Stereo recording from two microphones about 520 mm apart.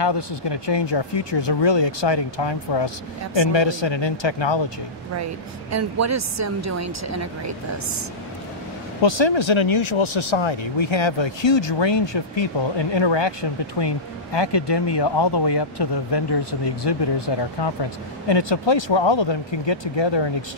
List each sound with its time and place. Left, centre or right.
0.0 s speech: left
5.1 s speech: right
9.0 s speech: left